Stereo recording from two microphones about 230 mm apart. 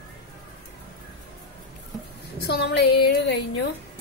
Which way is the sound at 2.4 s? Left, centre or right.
Left.